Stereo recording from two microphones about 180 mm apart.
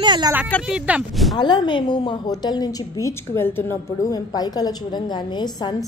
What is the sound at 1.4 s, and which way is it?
A woman's voice, 25° left (ahead or behind).